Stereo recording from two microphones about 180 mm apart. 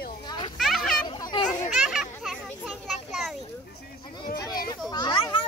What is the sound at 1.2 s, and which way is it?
Children playing, 25° left (ahead or behind).